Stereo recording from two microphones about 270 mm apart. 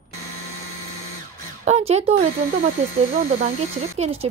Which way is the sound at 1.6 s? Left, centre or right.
Right.